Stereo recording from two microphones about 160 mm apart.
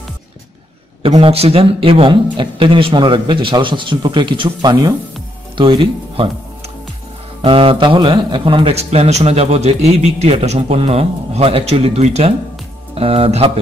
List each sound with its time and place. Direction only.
1.0 s a man's voice: 35° right (ahead or behind)
7.4 s a man's voice: 35° right (ahead or behind)